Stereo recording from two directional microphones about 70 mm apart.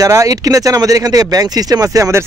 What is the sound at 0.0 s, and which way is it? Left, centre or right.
Speech, right.